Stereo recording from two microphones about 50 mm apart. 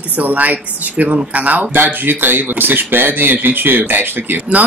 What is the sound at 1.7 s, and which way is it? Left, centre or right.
Speech, right.